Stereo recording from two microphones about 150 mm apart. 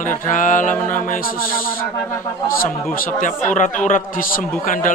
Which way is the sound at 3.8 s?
60° left (ahead or behind).